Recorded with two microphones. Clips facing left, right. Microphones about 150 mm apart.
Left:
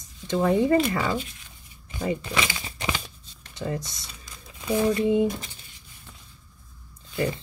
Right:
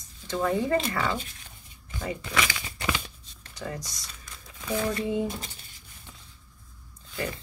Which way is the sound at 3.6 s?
25° left (ahead or behind).